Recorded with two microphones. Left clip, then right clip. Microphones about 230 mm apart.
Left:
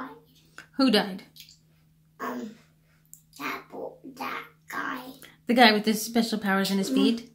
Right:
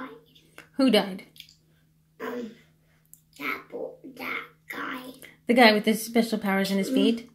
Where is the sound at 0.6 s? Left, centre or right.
Centre.